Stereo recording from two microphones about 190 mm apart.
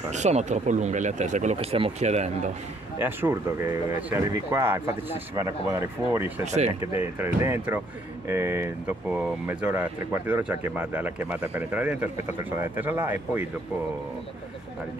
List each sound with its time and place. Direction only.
0.1 s speech: 35° right (ahead or behind)
3.0 s speech: 10° right (ahead or behind)
6.4 s speech: 35° right (ahead or behind)
7.0 s speech: 10° right (ahead or behind)